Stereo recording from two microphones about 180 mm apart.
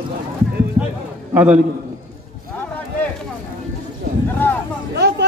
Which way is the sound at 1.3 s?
5° right (ahead or behind).